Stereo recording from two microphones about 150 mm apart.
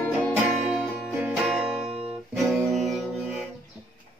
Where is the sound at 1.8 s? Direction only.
40° right (ahead or behind).